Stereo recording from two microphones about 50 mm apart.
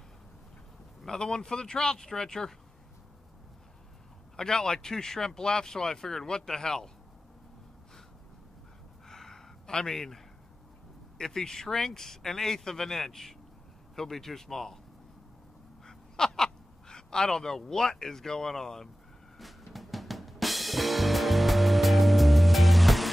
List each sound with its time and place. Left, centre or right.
1.0 s speech: centre
4.4 s speech: centre
9.0 s a sound: centre
11.1 s speech: centre
15.9 s speech: centre
19.3 s drum: centre